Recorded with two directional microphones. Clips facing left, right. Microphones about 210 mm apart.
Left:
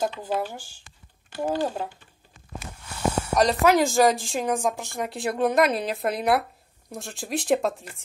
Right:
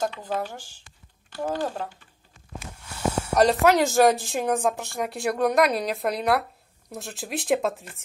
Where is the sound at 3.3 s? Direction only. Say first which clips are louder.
Right 1 dB; centre (ahead or behind).